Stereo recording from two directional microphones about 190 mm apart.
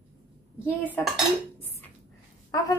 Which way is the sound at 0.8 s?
10° left (ahead or behind).